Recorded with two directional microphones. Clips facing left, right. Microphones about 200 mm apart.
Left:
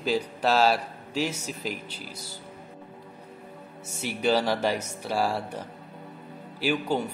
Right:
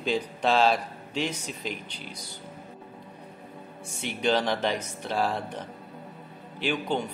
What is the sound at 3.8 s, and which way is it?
Speech, 5° left (ahead or behind).